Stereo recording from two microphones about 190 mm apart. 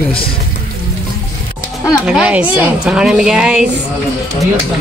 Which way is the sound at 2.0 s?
5° right (ahead or behind).